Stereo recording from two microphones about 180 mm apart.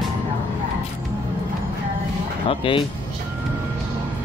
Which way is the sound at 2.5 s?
30° left (ahead or behind).